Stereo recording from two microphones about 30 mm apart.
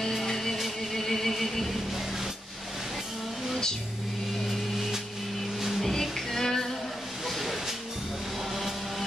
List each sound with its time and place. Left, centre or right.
0.3 s music: centre
5.8 s music: centre
7.2 s hiss: centre